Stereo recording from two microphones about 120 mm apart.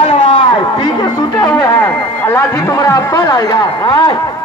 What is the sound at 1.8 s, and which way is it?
Speech, 20° left (ahead or behind).